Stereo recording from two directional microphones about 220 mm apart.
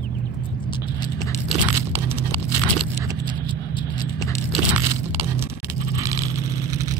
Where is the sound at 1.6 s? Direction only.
10° right (ahead or behind).